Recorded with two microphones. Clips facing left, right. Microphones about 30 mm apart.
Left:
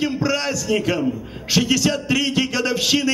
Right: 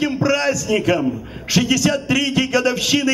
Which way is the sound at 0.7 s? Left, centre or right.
Centre.